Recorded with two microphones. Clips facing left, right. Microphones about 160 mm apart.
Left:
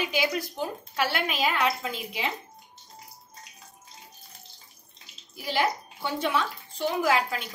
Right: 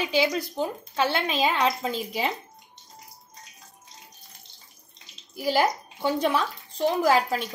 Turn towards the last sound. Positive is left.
turn(degrees=-40)  # may be behind; listen again after turning